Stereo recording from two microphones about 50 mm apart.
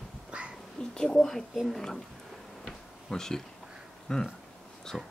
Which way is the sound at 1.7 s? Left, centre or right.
Centre.